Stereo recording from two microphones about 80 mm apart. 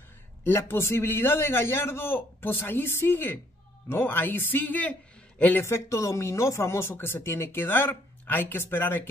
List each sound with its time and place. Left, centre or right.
0.4 s speech: left
5.7 s speech: left